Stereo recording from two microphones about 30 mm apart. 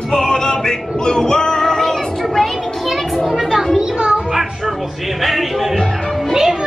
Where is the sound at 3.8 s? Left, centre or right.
Right.